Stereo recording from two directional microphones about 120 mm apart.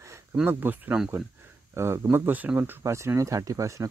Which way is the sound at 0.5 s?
15° right (ahead or behind).